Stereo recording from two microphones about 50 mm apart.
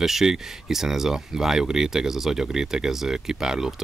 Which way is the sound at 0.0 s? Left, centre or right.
Centre.